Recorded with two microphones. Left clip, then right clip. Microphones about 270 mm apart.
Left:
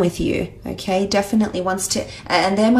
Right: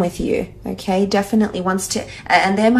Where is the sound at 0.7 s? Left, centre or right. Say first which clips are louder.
Right 1 dB; left.